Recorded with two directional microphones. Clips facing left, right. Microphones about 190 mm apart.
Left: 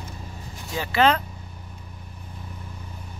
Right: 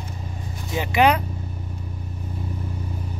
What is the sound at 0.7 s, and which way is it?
Speech, 15° right (ahead or behind).